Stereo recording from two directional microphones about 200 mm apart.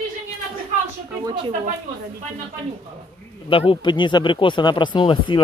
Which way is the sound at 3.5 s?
25° left (ahead or behind).